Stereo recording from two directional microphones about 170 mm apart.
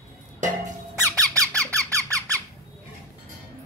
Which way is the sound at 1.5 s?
10° left (ahead or behind).